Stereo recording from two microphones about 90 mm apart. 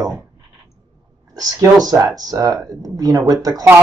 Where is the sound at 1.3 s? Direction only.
40° right (ahead or behind).